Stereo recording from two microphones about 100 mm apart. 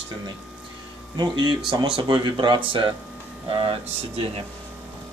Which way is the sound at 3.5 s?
70° right (ahead or behind).